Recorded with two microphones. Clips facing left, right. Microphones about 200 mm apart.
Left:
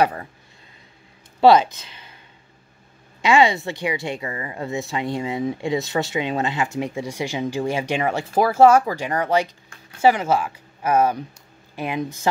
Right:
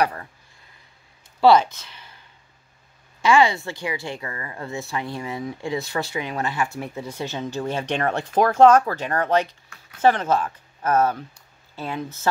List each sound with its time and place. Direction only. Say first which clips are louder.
0.0 s speech: left 3 dB; 20° left (ahead or behind)
1.4 s speech: left 2 dB; 20° left (ahead or behind)
3.2 s speech: left 1 dB; 20° left (ahead or behind)